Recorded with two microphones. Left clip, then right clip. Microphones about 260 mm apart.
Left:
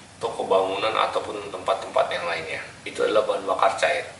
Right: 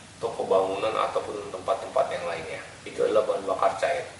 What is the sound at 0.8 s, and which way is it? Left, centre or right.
Speech, centre.